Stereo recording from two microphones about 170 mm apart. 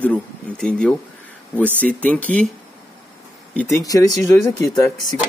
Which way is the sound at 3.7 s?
20° left (ahead or behind).